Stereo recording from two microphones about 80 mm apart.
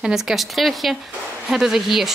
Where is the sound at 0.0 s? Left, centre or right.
Centre.